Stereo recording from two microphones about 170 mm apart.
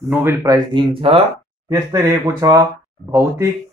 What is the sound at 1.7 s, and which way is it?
Speech, 15° right (ahead or behind).